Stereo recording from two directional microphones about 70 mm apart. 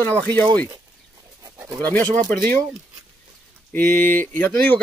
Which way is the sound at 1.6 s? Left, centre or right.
Right.